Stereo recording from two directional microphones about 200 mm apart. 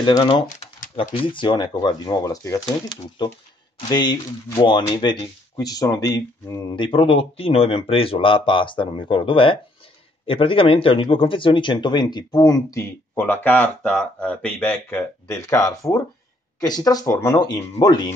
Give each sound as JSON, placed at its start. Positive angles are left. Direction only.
{"t": 0.0, "sound": "speech", "side_deg": 20}
{"t": 0.6, "sound": "typing", "side_deg": 35}
{"t": 1.1, "sound": "speech", "side_deg": 25}